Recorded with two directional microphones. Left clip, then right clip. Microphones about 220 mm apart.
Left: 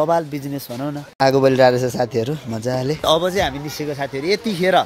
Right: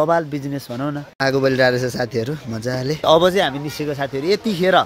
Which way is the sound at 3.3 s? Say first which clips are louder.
Right 2 dB; 20° right (ahead or behind).